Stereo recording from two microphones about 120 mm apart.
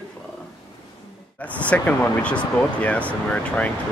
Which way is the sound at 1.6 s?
15° left (ahead or behind).